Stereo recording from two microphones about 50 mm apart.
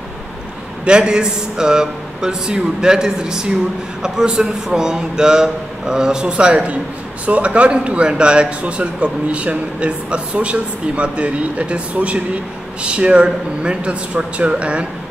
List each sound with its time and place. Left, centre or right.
0.8 s a man's voice: centre